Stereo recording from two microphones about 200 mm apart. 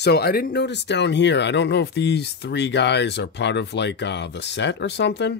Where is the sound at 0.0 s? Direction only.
50° left (ahead or behind).